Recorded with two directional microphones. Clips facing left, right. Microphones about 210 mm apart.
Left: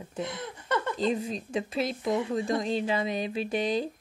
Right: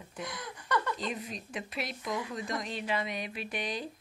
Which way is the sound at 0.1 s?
25° left (ahead or behind).